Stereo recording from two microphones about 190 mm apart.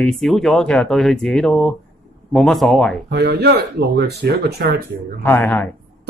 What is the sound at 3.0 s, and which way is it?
Speech, 55° right (ahead or behind).